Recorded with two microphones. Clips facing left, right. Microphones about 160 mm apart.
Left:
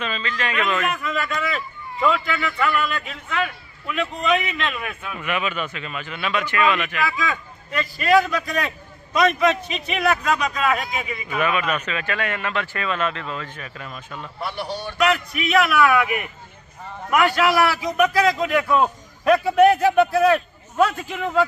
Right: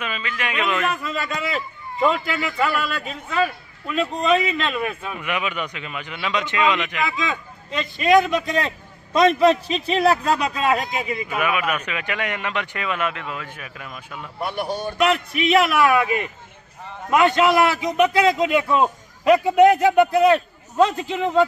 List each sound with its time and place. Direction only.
0.0 s speech: 10° right (ahead or behind)
1.0 s a man's voice: 30° right (ahead or behind)
5.2 s speech: 15° right (ahead or behind); by 11.3 s 35° right (ahead or behind)
11.3 s speech: 10° right (ahead or behind)
14.6 s a man's voice: 50° right (ahead or behind)
15.0 s speech: 25° right (ahead or behind)